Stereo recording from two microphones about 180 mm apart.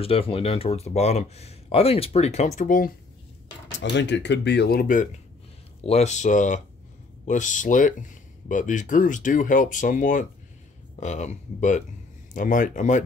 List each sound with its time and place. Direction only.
0.0 s speech: 30° left (ahead or behind); by 2.9 s 45° left (ahead or behind)
3.9 s speech: 75° left (ahead or behind); by 5.0 s 50° left (ahead or behind)
5.9 s speech: 40° left (ahead or behind)